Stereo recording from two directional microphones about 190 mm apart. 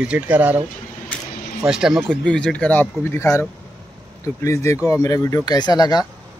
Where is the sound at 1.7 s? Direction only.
5° right (ahead or behind).